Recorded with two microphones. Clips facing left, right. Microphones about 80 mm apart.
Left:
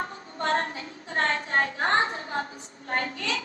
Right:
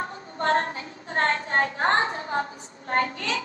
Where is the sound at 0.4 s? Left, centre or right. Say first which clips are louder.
Right 3 dB; right.